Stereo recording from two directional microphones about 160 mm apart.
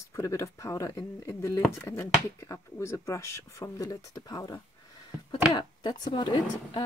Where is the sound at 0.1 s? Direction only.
20° left (ahead or behind).